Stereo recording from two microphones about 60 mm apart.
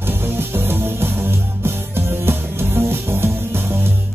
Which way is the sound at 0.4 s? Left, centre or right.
Right.